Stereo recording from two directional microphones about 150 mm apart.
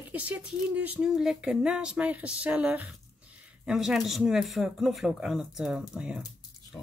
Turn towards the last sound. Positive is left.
turn(degrees=-5)  # may be behind; listen again after turning